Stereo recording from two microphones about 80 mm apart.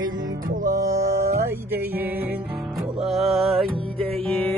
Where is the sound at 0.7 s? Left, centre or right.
Right.